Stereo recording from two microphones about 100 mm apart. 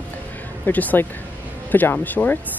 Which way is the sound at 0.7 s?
15° left (ahead or behind).